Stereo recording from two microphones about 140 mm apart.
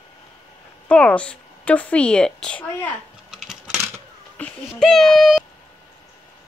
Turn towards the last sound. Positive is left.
turn(degrees=0)  # may be behind; listen again after turning